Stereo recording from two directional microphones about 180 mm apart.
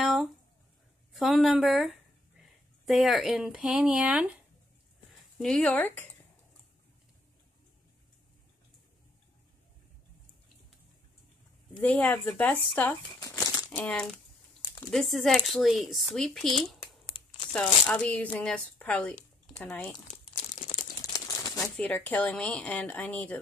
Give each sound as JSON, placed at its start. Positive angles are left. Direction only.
{"t": 0.0, "sound": "a sound", "side_deg": 0}
{"t": 1.1, "sound": "speech", "side_deg": 0}
{"t": 5.4, "sound": "speech", "side_deg": 5}
{"t": 11.8, "sound": "speech", "side_deg": 10}
{"t": 17.1, "sound": "tearing", "side_deg": 25}
{"t": 17.5, "sound": "speech", "side_deg": 5}
{"t": 20.5, "sound": "crumpling", "side_deg": 40}
{"t": 20.9, "sound": "crumpling", "side_deg": 20}
{"t": 21.5, "sound": "speech", "side_deg": 5}